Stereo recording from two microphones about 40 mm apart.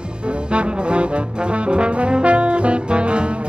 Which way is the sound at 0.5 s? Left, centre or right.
Right.